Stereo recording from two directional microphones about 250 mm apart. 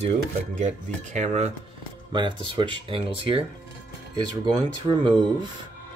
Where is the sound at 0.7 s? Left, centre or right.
Right.